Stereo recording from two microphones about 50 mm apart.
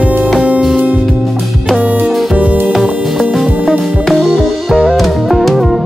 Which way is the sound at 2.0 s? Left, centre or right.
Centre.